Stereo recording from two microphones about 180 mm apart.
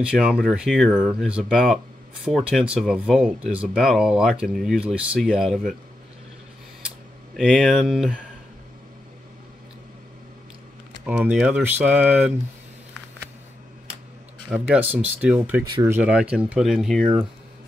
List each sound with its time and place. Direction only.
0.0 s speech: 5° right (ahead or behind)
7.3 s speech: centre (ahead or behind)
11.1 s speech: 5° right (ahead or behind)
14.5 s speech: 10° right (ahead or behind)
15.6 s speech: 20° right (ahead or behind)
16.0 s speech: 5° right (ahead or behind)